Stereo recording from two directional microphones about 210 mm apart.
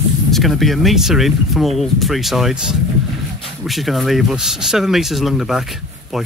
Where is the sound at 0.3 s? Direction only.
Centre (ahead or behind).